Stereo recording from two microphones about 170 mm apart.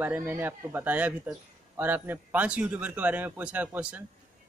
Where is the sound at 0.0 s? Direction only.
10° right (ahead or behind).